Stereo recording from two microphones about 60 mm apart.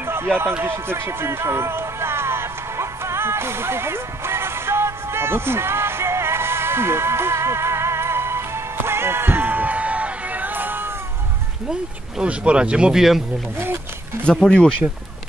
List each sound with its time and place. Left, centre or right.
0.0 s a sound: right
0.7 s music: right
11.6 s speech: centre
14.4 s speech: centre